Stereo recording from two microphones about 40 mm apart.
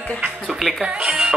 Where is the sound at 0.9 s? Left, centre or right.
Right.